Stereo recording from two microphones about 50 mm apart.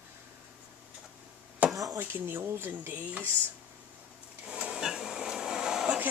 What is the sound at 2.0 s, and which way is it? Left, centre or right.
A woman's voice, right.